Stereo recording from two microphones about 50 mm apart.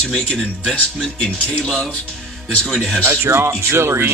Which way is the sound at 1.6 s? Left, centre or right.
Centre.